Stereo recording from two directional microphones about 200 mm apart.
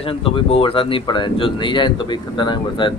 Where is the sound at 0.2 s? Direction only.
25° left (ahead or behind).